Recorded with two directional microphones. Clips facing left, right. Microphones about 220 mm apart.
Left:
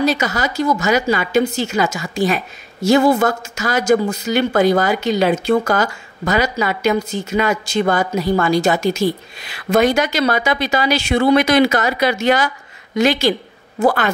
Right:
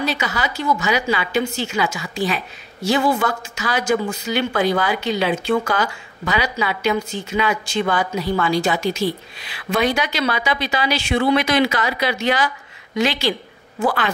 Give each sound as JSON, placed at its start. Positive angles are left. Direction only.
{"t": 0.0, "sound": "a woman's voice", "side_deg": 45}